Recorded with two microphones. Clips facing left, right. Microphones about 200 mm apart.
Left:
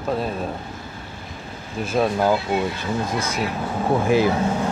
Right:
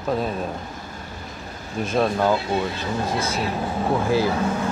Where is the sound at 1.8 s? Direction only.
5° left (ahead or behind).